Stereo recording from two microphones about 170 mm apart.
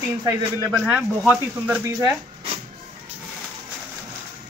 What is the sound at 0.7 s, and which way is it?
Speech, 5° right (ahead or behind).